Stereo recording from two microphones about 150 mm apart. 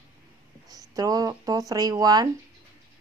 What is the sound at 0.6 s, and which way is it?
Speech, 25° right (ahead or behind).